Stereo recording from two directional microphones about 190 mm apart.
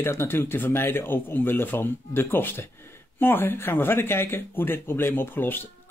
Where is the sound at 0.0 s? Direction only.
15° left (ahead or behind).